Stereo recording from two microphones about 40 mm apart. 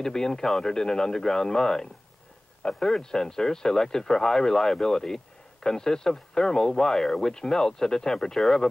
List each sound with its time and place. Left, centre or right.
0.0 s speech: centre